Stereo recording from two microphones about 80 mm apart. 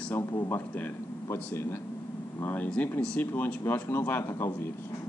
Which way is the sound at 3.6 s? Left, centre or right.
Left.